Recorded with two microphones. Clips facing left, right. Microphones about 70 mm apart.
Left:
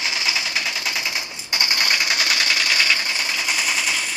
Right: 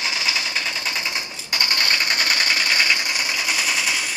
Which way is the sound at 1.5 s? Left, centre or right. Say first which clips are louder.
Even; centre.